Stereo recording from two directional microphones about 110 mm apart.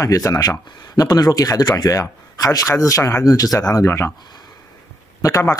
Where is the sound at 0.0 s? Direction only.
30° left (ahead or behind).